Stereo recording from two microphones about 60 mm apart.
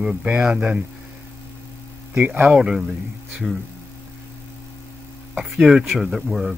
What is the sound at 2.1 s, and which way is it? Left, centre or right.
Speech, right.